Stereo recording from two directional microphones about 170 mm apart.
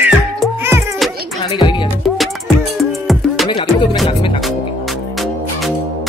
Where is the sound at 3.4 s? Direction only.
25° left (ahead or behind).